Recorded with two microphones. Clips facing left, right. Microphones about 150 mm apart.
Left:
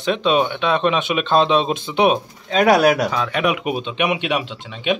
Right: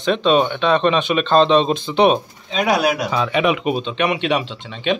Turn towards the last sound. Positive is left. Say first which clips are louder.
# right 1 dB
turn(degrees=5)  # may be behind; listen again after turning